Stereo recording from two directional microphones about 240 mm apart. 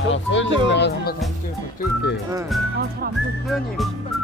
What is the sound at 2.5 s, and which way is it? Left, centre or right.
Speech, centre.